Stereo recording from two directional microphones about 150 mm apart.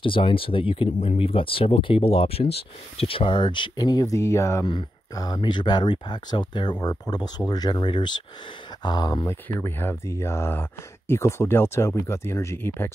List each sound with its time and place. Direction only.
0.0 s speech: 35° left (ahead or behind); by 12.9 s 15° left (ahead or behind)